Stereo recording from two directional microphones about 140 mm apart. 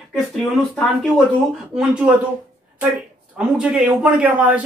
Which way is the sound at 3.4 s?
10° right (ahead or behind).